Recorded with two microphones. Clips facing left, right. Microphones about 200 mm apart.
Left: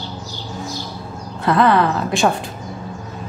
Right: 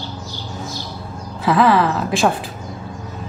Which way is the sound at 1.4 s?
Centre (ahead or behind).